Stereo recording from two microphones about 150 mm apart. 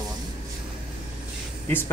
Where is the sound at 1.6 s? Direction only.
15° left (ahead or behind).